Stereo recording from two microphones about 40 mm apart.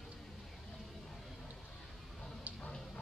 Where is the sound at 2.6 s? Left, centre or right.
Centre.